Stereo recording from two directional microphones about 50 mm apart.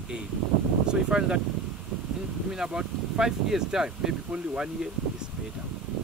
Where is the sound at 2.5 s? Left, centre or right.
Centre.